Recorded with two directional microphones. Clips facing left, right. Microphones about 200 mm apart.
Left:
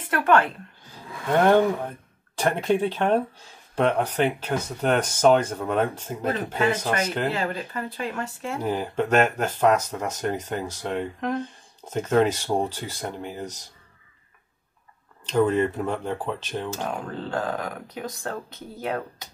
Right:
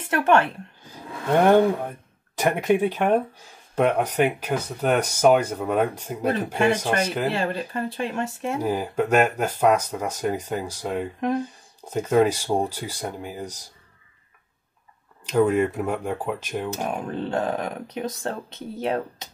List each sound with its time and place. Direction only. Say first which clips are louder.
0.1 s speech: right 1 dB; 25° right (ahead or behind)
0.9 s speech: right 2 dB; 10° right (ahead or behind)
7.3 s speech: right 2 dB; 30° right (ahead or behind); by 13.7 s 10° right (ahead or behind)
15.2 s speech: right 1 dB; 10° right (ahead or behind)